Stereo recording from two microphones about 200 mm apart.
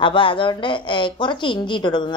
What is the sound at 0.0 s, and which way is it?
A woman's voice, 25° left (ahead or behind).